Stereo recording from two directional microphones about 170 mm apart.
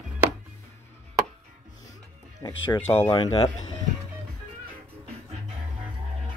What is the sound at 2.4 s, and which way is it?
Speech, 20° left (ahead or behind).